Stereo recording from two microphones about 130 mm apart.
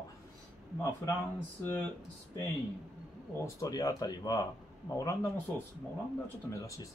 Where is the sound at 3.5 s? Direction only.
25° left (ahead or behind).